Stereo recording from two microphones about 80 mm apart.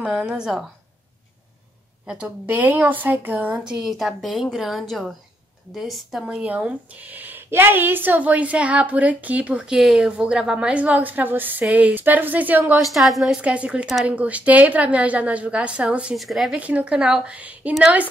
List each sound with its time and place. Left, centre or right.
0.0 s a woman's voice: centre
2.0 s a woman's voice: centre
2.4 s a woman's voice: right
3.8 s a woman's voice: centre
6.2 s a woman's voice: centre
12.9 s a woman's voice: centre
13.4 s a woman's voice: centre
16.2 s a woman's voice: centre
16.5 s a woman's voice: centre